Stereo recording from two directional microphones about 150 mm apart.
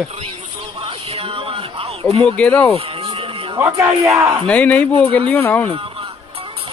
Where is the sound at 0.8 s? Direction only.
40° right (ahead or behind).